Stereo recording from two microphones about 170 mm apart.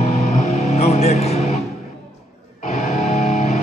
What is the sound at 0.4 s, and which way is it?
Music, 40° left (ahead or behind).